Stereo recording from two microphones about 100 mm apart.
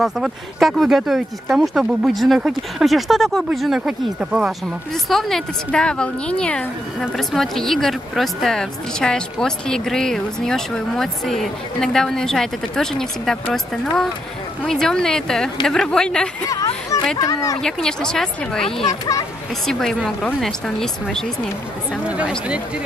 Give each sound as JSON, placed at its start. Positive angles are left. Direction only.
{"t": 0.0, "sound": "a woman's voice", "side_deg": 0}
{"t": 5.1, "sound": "a woman's voice", "side_deg": 5}
{"t": 17.2, "sound": "speech", "side_deg": 35}
{"t": 17.6, "sound": "a woman's voice", "side_deg": 5}
{"t": 22.0, "sound": "speech", "side_deg": -10}